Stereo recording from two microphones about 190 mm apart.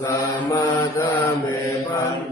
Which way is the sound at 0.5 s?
15° left (ahead or behind).